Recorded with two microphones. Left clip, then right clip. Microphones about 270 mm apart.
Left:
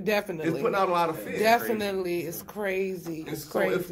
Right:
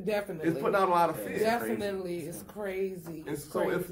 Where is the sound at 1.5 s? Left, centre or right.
Left.